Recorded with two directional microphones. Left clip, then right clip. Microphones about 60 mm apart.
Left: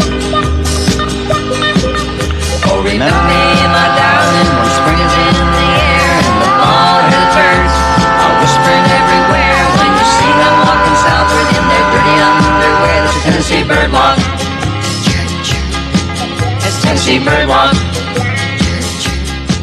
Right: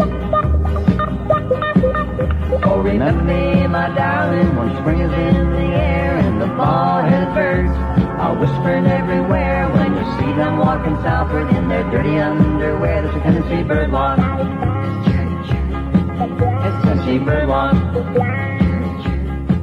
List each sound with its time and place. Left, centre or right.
2.6 s music: right
16.8 s music: right